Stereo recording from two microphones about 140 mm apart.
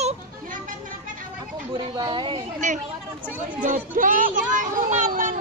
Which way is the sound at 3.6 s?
70° right (ahead or behind).